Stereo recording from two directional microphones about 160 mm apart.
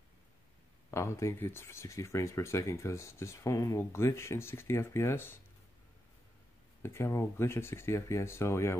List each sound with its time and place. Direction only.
0.8 s speech: 15° left (ahead or behind)
6.8 s speech: 15° left (ahead or behind)